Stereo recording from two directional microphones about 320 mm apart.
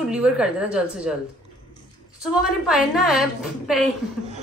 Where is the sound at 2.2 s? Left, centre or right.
Centre.